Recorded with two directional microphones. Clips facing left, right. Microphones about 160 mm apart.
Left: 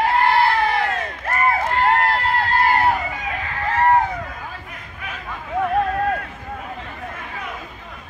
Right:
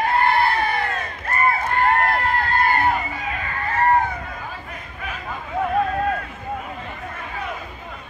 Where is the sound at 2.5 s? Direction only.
90° left.